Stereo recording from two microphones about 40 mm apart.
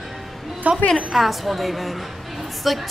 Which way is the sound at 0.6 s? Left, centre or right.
Right.